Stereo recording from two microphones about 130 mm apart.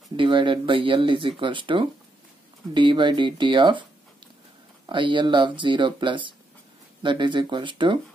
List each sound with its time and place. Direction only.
0.1 s speech: 40° right (ahead or behind)
4.8 s speech: 40° right (ahead or behind)